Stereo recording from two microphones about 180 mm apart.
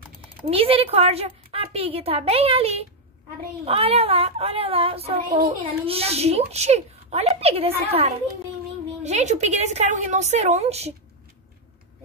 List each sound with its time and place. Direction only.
0.5 s speech: 30° right (ahead or behind)